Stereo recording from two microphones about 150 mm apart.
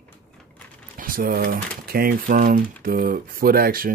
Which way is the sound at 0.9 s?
70° right (ahead or behind).